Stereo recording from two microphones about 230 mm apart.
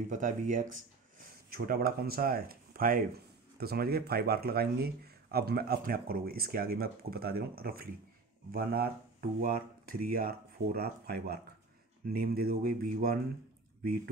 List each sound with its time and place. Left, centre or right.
0.1 s speech: right